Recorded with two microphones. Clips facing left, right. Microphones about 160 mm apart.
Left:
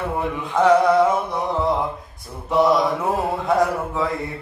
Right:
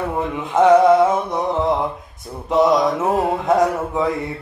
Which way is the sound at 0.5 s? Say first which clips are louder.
Right 4 dB; 20° right (ahead or behind).